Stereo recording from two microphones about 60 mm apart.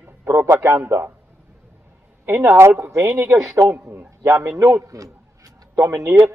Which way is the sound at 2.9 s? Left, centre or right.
Right.